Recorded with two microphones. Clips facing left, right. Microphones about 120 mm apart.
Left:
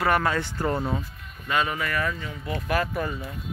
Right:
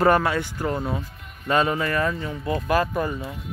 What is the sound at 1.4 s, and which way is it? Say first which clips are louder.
Speech: right 5 dB; 35° right (ahead or behind).